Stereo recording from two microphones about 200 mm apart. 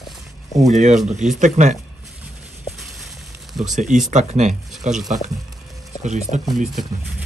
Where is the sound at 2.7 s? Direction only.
Centre (ahead or behind).